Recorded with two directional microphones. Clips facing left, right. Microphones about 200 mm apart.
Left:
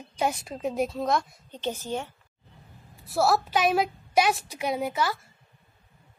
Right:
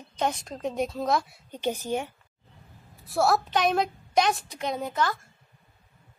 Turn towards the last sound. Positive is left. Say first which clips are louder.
# left 1 dB
turn(degrees=10)  # may be behind; listen again after turning